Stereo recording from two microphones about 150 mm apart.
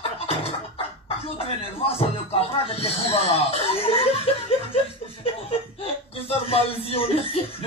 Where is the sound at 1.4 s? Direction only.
40° left (ahead or behind).